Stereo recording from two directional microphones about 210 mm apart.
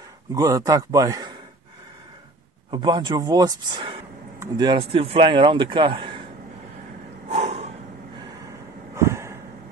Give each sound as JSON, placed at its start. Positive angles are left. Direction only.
{"t": 0.3, "sound": "a man's voice", "side_deg": -15}
{"t": 2.7, "sound": "speech", "side_deg": -20}
{"t": 7.2, "sound": "snort", "side_deg": -30}
{"t": 8.9, "sound": "a sound", "side_deg": -15}